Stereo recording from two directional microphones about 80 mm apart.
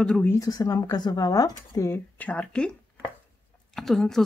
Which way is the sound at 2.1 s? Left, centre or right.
Centre.